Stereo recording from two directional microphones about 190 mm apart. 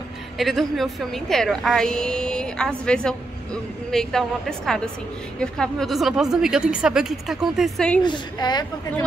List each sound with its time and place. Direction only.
0.4 s a woman's voice: centre (ahead or behind)
8.0 s a woman's voice: 20° left (ahead or behind)